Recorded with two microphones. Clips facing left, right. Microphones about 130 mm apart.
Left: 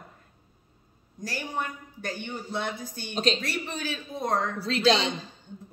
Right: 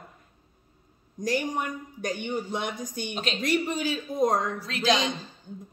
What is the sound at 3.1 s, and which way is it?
Speech, 35° left (ahead or behind).